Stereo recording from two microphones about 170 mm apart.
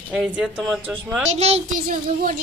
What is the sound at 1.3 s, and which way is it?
Speech, 40° right (ahead or behind).